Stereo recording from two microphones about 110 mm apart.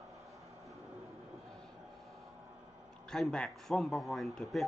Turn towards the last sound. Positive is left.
turn(degrees=0)  # may be behind; listen again after turning